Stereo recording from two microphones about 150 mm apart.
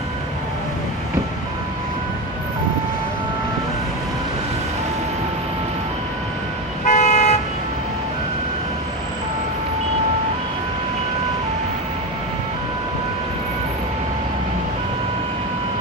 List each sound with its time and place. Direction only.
6.9 s toot: 50° left (ahead or behind)